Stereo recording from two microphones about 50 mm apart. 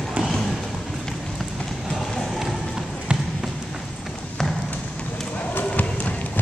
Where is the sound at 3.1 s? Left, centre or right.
Centre.